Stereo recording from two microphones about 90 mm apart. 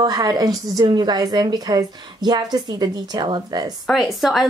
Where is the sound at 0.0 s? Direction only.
45° right (ahead or behind).